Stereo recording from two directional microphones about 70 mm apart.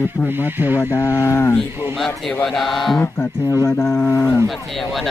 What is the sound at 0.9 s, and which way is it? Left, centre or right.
Speech, left.